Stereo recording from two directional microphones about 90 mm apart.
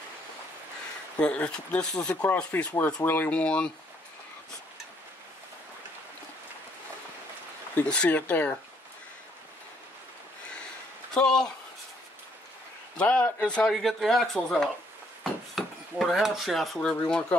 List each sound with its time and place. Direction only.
1.1 s speech: 10° left (ahead or behind)
7.7 s speech: 15° left (ahead or behind)
11.1 s speech: 10° left (ahead or behind)
12.9 s speech: 15° left (ahead or behind)